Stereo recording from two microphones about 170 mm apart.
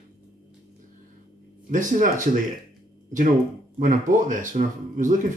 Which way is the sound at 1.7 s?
50° right (ahead or behind).